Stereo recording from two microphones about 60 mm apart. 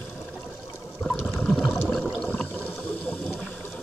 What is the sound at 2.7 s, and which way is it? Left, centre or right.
Water, centre.